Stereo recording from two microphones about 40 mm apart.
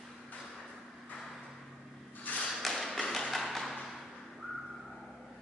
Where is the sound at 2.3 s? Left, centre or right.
Left.